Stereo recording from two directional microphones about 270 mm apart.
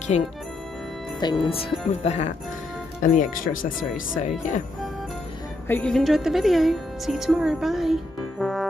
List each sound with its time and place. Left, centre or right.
0.1 s speech: left
1.4 s speech: left
5.7 s speech: centre